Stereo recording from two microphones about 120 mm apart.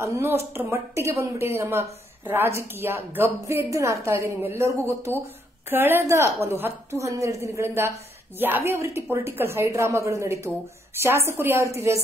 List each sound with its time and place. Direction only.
0.0 s speech: 20° right (ahead or behind)